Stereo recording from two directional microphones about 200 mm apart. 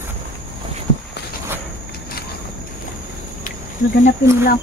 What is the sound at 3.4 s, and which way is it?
Cricket, 40° left (ahead or behind).